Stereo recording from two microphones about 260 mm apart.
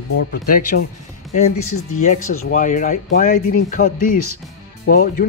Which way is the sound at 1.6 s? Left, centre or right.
Left.